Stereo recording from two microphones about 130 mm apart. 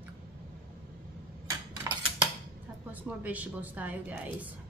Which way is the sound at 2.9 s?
10° right (ahead or behind).